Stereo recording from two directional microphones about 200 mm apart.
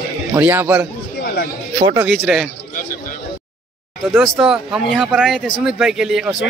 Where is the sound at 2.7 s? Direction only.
40° left (ahead or behind).